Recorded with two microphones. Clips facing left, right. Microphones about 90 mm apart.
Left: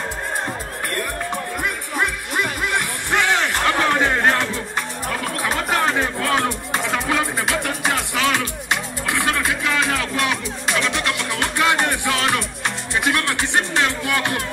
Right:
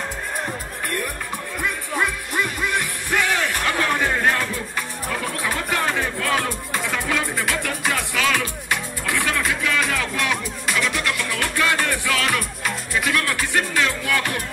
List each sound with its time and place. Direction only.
1.6 s music: 20° left (ahead or behind)